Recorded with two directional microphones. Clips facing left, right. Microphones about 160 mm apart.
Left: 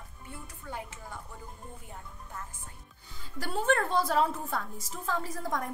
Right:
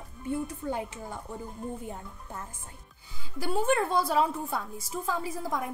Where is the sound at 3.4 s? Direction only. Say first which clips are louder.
Right 2 dB; 10° right (ahead or behind).